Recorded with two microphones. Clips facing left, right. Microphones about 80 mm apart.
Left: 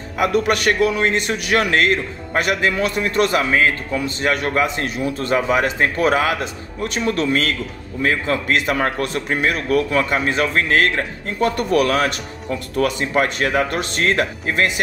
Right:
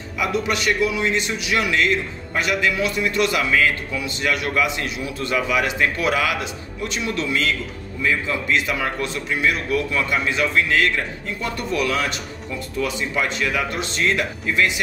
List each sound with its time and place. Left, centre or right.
0.2 s a man's voice: left